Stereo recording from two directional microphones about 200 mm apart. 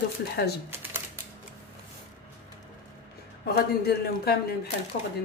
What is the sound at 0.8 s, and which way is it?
Typewriter, 10° right (ahead or behind).